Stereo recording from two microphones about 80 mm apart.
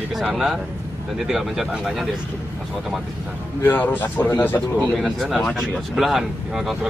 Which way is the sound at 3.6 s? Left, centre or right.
Left.